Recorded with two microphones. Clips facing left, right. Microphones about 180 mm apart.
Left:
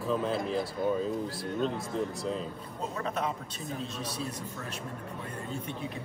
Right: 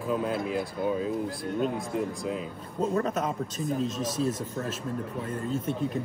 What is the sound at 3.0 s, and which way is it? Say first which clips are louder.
Speech: right 4 dB; 40° right (ahead or behind).